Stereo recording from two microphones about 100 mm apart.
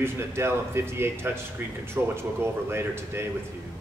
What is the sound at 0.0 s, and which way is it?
Speech, 25° right (ahead or behind).